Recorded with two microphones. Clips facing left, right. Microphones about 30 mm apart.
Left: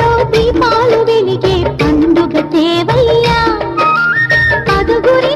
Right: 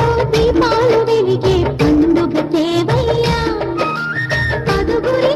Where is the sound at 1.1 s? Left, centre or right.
Left.